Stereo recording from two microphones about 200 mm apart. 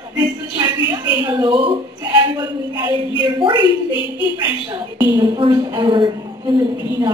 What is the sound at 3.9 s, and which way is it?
Speech, 25° left (ahead or behind).